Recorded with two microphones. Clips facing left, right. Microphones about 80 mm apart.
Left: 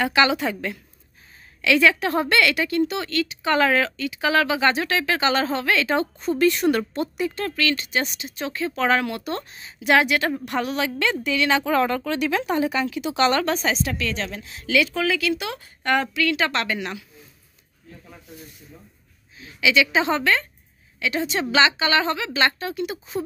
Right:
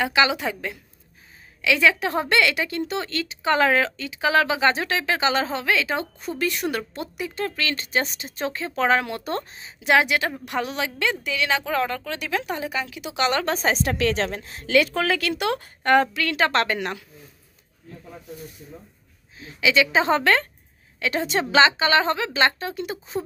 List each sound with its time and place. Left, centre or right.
0.0 s a woman's voice: centre
7.4 s a woman's voice: right; by 13.5 s centre
13.5 s a woman's voice: right
13.8 s a woman's voice: right
15.8 s a woman's voice: right
19.3 s a woman's voice: right